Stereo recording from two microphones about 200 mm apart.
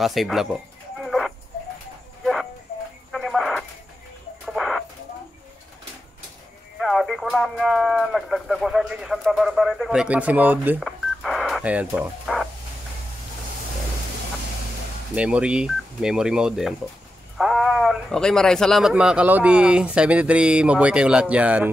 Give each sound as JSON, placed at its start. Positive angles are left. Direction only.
{"t": 0.0, "sound": "speech", "side_deg": 0}
{"t": 1.0, "sound": "a sound", "side_deg": 0}
{"t": 3.1, "sound": "radio", "side_deg": 0}
{"t": 4.5, "sound": "chicken", "side_deg": 0}
{"t": 6.8, "sound": "speech", "side_deg": 0}
{"t": 15.1, "sound": "speech", "side_deg": -5}